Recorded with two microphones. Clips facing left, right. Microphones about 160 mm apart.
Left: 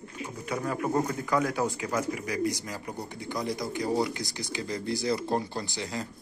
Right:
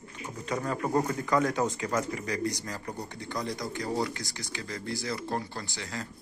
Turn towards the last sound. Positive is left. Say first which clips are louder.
# left 4 dB
turn(degrees=20)  # may be behind; listen again after turning